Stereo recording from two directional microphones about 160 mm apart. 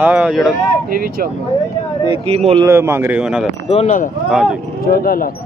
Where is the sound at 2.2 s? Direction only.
40° right (ahead or behind).